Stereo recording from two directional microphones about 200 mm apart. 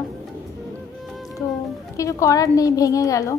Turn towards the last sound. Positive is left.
turn(degrees=15)  # may be behind; listen again after turning